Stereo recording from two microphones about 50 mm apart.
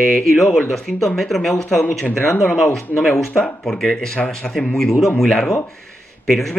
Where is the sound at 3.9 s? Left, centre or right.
Centre.